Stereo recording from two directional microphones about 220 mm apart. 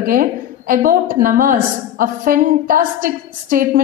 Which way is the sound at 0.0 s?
40° right (ahead or behind).